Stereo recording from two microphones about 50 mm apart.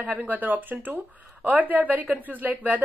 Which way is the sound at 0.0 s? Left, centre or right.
Right.